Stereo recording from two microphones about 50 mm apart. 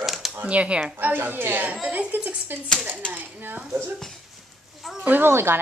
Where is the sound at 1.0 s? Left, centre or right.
Right.